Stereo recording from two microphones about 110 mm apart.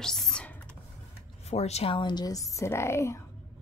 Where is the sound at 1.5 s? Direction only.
75° left (ahead or behind).